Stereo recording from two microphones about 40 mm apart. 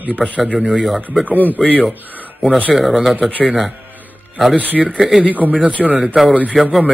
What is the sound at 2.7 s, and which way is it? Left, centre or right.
Speech, centre.